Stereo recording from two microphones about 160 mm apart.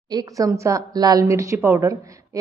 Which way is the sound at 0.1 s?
25° right (ahead or behind).